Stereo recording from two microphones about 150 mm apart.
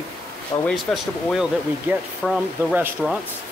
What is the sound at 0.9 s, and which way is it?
Speech, 5° left (ahead or behind).